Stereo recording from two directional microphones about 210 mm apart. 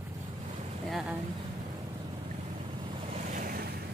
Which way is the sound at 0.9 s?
5° right (ahead or behind).